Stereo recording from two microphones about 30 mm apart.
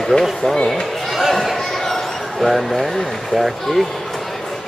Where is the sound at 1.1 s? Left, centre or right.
Centre.